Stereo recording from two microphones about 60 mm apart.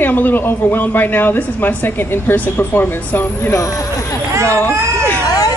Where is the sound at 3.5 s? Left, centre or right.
Left.